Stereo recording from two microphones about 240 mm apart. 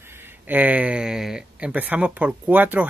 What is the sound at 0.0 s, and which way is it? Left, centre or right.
Speech, centre.